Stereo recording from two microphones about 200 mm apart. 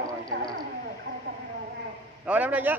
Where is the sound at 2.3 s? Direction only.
10° right (ahead or behind).